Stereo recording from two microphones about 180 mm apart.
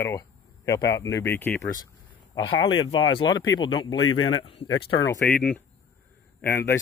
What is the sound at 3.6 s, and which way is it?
Speech, 25° left (ahead or behind).